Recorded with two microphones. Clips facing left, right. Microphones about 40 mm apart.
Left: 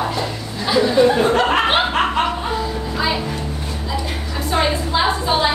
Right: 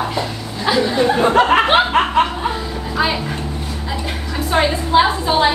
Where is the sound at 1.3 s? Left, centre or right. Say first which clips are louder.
Right 3 dB; centre.